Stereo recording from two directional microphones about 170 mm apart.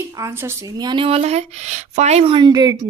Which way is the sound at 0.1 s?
15° right (ahead or behind).